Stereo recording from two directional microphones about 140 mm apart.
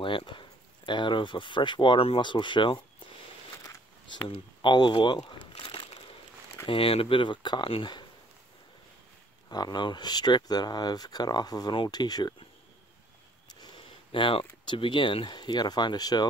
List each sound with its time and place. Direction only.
0.0 s speech: 35° left (ahead or behind)
4.3 s speech: 35° left (ahead or behind)
5.5 s a sound: 40° left (ahead or behind)
6.7 s speech: 40° left (ahead or behind)
9.5 s speech: 30° left (ahead or behind)
13.5 s a sound: 30° left (ahead or behind)
14.7 s speech: 35° left (ahead or behind)